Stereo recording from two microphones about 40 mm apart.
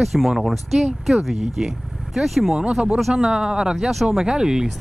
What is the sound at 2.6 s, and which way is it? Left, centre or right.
Speech, right.